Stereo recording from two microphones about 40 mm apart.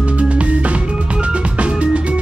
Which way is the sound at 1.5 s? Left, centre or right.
Right.